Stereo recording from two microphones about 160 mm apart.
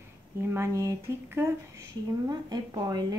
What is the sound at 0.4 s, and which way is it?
Speech, 15° right (ahead or behind).